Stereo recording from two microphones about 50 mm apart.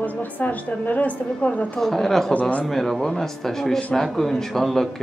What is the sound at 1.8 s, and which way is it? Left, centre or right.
Speech, centre.